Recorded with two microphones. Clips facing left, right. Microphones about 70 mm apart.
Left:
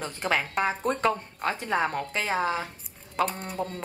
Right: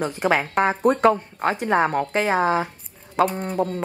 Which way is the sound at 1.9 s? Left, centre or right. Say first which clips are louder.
Right 8 dB; right.